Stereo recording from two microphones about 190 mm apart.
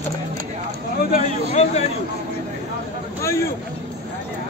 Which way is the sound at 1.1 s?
40° left (ahead or behind).